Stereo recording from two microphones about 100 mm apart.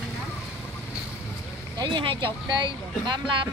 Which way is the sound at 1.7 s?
50° right (ahead or behind).